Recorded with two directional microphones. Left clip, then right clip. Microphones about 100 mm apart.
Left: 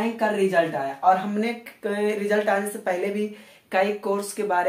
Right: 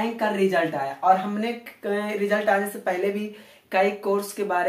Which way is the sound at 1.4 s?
30° left (ahead or behind).